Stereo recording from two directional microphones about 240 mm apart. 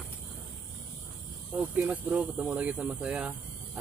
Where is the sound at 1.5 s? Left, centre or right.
Centre.